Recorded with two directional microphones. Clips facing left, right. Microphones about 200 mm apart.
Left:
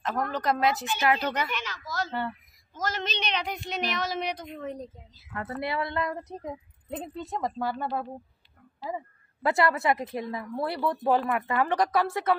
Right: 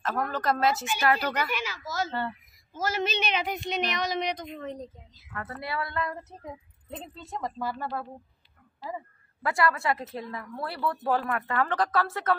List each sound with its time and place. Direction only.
0.3 s speech: 20° left (ahead or behind)
1.5 s speech: 10° right (ahead or behind); by 4.9 s 10° left (ahead or behind)
5.3 s speech: 20° left (ahead or behind)
9.4 s speech: 25° left (ahead or behind)